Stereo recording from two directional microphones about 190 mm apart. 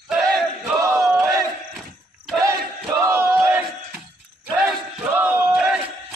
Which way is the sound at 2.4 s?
15° right (ahead or behind).